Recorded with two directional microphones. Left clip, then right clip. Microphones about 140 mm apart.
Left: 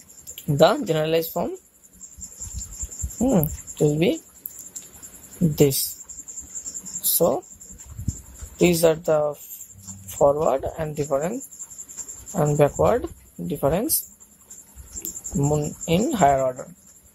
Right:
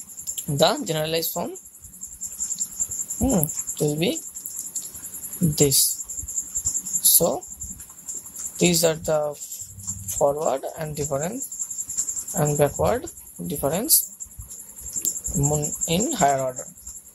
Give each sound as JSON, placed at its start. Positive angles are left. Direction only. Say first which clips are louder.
{"t": 0.2, "sound": "speech", "louder": "left 3 dB", "side_deg": 15}
{"t": 3.2, "sound": "speech", "louder": "left 3 dB", "side_deg": 15}
{"t": 5.5, "sound": "speech", "louder": "left 2 dB", "side_deg": 20}
{"t": 7.0, "sound": "a sound", "louder": "left 2 dB", "side_deg": 15}
{"t": 8.5, "sound": "speech", "louder": "left 3 dB", "side_deg": 15}
{"t": 15.4, "sound": "speech", "louder": "left 2 dB", "side_deg": 15}